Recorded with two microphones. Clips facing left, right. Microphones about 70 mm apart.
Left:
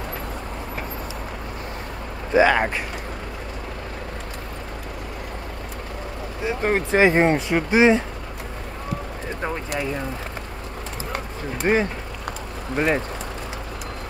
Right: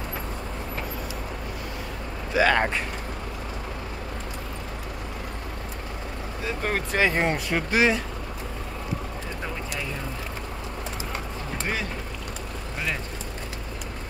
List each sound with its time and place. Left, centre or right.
2.5 s speech: centre
6.4 s speech: left
11.6 s speech: left